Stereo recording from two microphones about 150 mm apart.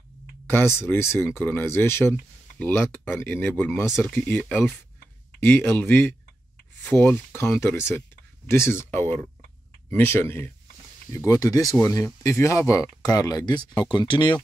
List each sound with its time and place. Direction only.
0.7 s speech: 15° left (ahead or behind); by 14.3 s 30° left (ahead or behind)